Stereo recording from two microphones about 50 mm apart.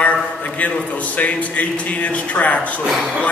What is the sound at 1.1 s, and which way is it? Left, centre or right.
A man's voice, left.